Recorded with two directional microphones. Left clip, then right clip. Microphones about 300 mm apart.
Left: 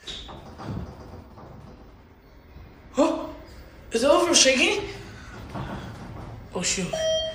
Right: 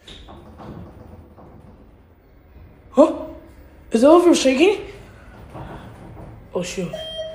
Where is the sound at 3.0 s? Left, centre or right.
Centre.